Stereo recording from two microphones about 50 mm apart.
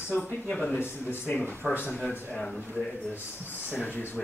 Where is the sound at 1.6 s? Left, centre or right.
Centre.